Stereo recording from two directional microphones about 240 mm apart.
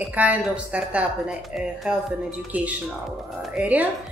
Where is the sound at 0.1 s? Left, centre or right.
Centre.